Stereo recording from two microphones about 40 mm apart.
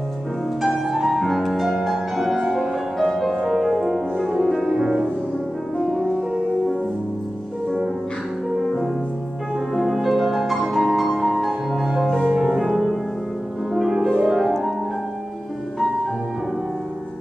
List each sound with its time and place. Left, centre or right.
0.6 s music: centre
8.6 s music: centre
10.7 s music: centre
11.0 s music: centre
12.3 s music: centre